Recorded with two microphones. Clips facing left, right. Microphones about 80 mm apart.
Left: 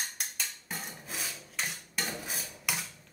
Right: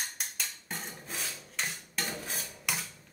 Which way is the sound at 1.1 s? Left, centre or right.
Centre.